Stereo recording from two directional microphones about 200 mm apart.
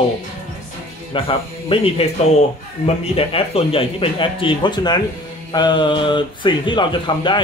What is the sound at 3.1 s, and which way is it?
Speech, 30° left (ahead or behind).